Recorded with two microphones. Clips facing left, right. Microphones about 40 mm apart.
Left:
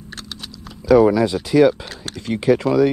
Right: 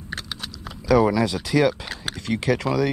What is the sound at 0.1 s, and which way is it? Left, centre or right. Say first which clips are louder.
Typing: right 2 dB; centre.